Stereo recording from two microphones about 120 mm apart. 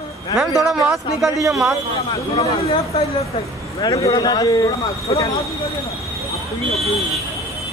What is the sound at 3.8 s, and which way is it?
Speech, 35° left (ahead or behind).